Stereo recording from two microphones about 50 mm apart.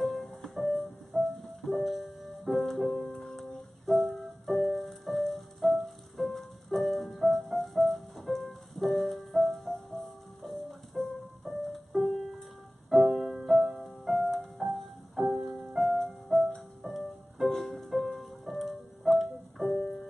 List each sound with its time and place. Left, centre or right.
0.0 s music: centre
3.1 s music: centre
3.3 s music: centre
17.5 s music: centre